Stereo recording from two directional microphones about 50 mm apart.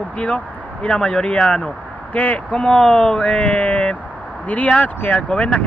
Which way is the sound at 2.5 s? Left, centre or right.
Centre.